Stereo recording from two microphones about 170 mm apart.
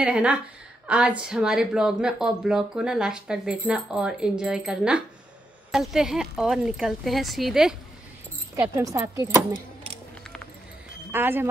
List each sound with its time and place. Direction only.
0.0 s a woman's voice: 5° right (ahead or behind)
8.5 s speech: 20° right (ahead or behind)
11.1 s speech: 10° right (ahead or behind)